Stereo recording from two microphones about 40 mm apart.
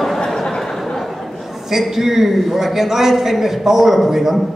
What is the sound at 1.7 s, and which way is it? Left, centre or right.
A man's voice, centre.